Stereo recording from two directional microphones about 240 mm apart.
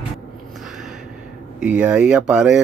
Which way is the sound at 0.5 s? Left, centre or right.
Centre.